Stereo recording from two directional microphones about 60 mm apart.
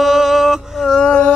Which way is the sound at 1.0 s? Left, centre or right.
Left.